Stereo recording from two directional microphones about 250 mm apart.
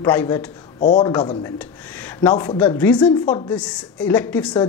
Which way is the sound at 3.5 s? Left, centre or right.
Centre.